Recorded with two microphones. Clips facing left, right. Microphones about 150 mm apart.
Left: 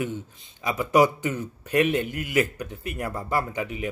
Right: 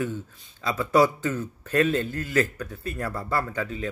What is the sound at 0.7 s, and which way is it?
A man's voice, 15° left (ahead or behind).